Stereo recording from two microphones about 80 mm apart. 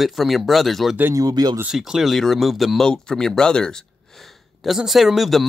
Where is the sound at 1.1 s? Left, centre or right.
Right.